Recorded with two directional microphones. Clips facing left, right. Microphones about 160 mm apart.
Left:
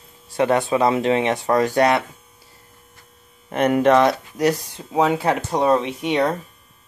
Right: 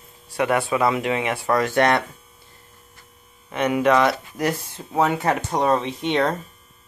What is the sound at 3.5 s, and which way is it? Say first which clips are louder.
Speech: left 4 dB; 50° left (ahead or behind).